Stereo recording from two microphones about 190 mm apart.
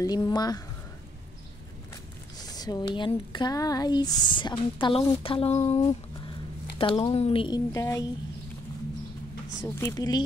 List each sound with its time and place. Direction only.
0.0 s speech: 20° left (ahead or behind)
2.3 s speech: 20° left (ahead or behind)
9.8 s speech: 15° left (ahead or behind)